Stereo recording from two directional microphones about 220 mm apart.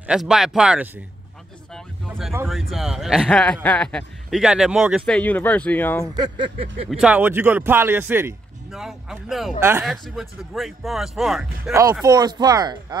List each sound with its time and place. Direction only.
0.0 s a man's voice: 5° right (ahead or behind)
2.4 s a man's voice: centre (ahead or behind)
6.1 s speech: 20° right (ahead or behind)
6.9 s a man's voice: 5° right (ahead or behind)
11.7 s a man's voice: 15° right (ahead or behind)